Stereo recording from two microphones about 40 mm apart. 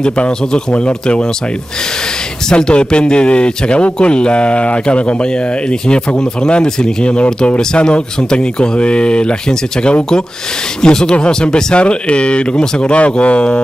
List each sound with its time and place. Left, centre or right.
0.0 s speech: left
2.5 s speech: left
13.0 s speech: left